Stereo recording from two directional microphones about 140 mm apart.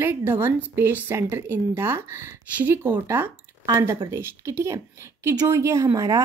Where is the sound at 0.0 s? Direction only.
15° right (ahead or behind).